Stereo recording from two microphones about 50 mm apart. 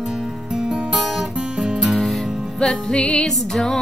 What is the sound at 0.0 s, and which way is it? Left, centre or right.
Music, centre.